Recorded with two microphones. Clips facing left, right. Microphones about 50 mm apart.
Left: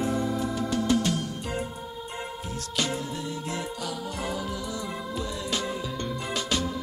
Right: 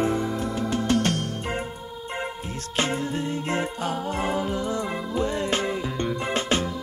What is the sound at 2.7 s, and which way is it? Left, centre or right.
Music, right.